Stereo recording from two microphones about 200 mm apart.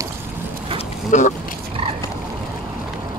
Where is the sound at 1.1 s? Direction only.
35° left (ahead or behind).